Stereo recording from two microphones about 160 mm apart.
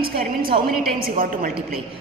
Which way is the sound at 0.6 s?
65° right (ahead or behind).